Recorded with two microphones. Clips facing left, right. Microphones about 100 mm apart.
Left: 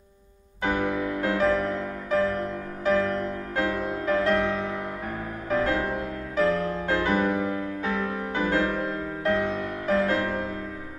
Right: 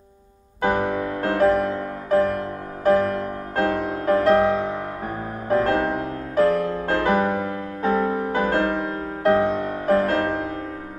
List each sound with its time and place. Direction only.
0.6 s music: 40° right (ahead or behind)
8.0 s music: 30° right (ahead or behind)